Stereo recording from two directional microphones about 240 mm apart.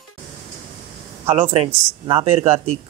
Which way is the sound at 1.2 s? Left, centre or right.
Right.